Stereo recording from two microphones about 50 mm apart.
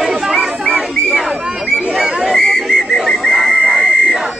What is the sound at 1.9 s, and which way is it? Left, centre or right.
Whistle, centre.